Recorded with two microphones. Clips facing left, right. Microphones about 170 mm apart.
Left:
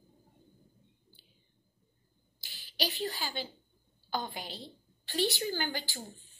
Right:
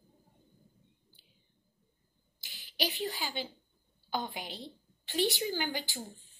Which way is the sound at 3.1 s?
20° right (ahead or behind).